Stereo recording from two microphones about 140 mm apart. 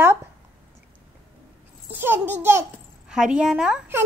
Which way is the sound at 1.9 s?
15° right (ahead or behind).